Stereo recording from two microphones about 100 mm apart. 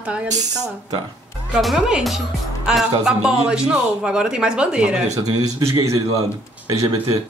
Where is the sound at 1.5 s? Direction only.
Centre (ahead or behind).